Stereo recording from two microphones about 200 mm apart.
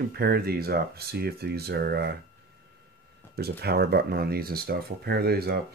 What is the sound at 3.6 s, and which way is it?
Speech, 55° right (ahead or behind).